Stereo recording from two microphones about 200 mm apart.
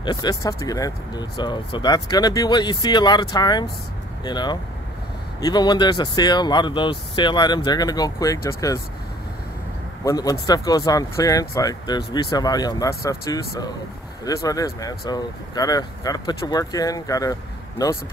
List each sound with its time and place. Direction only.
0.0 s speech: 20° left (ahead or behind)
10.0 s speech: 15° left (ahead or behind)